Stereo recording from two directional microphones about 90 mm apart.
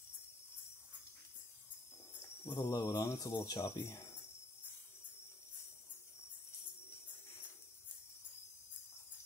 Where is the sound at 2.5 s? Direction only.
35° left (ahead or behind).